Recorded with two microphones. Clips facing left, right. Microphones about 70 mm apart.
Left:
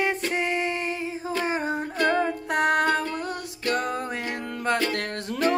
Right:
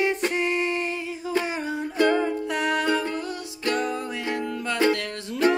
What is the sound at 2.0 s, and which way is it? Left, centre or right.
Music, left.